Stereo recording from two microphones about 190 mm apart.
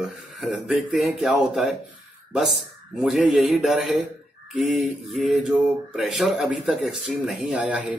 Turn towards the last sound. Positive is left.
turn(degrees=-5)  # may be behind; listen again after turning